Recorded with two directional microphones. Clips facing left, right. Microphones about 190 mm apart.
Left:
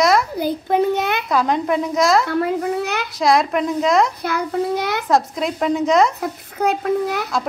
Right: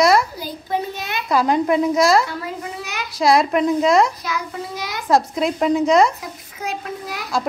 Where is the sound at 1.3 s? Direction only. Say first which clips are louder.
Right 4 dB; 5° right (ahead or behind).